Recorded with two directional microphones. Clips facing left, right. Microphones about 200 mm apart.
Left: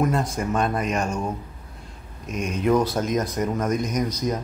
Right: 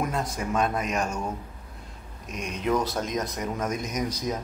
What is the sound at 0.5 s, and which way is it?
Speech, centre (ahead or behind).